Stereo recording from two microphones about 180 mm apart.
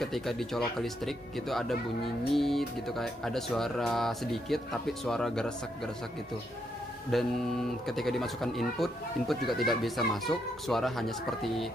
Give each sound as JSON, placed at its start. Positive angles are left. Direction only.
{"t": 0.0, "sound": "speech", "side_deg": 0}
{"t": 7.1, "sound": "speech", "side_deg": 0}